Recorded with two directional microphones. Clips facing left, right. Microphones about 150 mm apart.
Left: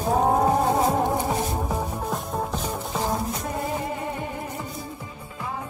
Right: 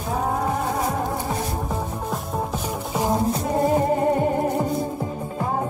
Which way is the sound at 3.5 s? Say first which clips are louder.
Right 12 dB; 40° right (ahead or behind).